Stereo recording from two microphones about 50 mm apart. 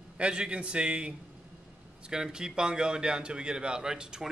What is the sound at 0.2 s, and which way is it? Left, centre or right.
A man's voice, centre.